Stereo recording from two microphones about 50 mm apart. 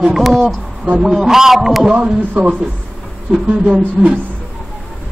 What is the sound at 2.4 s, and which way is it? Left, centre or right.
A man's voice, right.